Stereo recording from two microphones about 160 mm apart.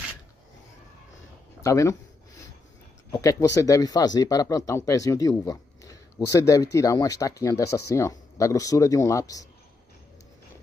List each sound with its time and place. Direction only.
1.6 s speech: 20° left (ahead or behind)
3.1 s speech: 20° left (ahead or behind)